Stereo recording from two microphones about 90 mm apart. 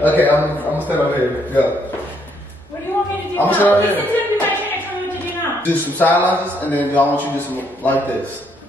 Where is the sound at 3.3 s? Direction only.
20° left (ahead or behind).